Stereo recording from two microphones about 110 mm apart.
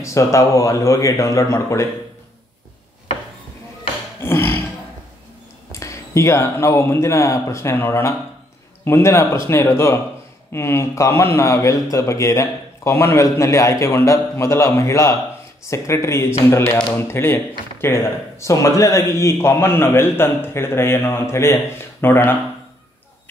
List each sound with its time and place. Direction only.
0.0 s a man's voice: 25° left (ahead or behind)
4.2 s a sound: 20° left (ahead or behind)
5.7 s a man's voice: 30° left (ahead or behind)